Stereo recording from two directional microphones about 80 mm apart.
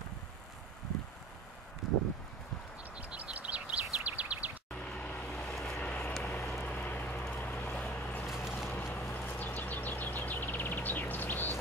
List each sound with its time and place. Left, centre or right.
1.8 s a sound: centre
3.0 s bird: centre
4.7 s vehicle: centre
5.5 s vehicle: centre
5.8 s vehicle: centre
8.3 s vehicle: centre
8.6 s vehicle: left